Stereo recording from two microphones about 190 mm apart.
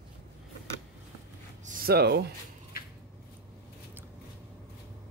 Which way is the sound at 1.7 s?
50° right (ahead or behind).